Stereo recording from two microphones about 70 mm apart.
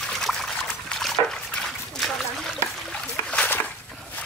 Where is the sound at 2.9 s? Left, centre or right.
Centre.